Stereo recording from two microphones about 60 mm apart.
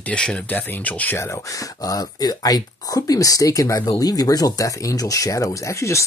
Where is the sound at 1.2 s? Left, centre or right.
Left.